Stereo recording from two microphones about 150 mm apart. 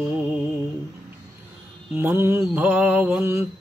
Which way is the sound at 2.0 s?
15° right (ahead or behind).